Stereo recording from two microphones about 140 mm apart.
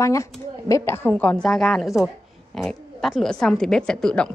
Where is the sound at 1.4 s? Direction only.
5° left (ahead or behind).